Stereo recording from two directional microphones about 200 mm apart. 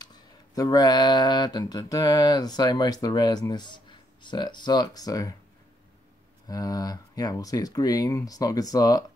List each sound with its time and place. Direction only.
0.0 s speech: 20° left (ahead or behind)
6.4 s speech: 20° left (ahead or behind)